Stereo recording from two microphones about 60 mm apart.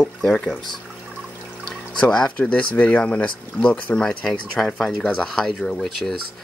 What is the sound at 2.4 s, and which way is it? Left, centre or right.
Speech, left.